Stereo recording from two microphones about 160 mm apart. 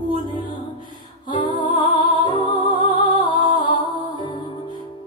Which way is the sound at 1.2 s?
30° left (ahead or behind).